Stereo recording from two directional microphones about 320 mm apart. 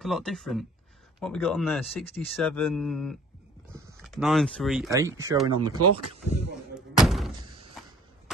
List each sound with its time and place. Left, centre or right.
0.0 s speech: centre
5.8 s speech: right
6.7 s a sound: centre